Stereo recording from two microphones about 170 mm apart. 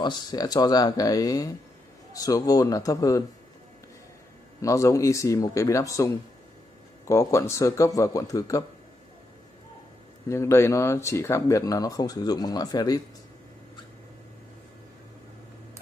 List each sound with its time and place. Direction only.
0.0 s speech: 25° left (ahead or behind)
4.6 s speech: 20° left (ahead or behind)
10.2 s speech: 15° left (ahead or behind)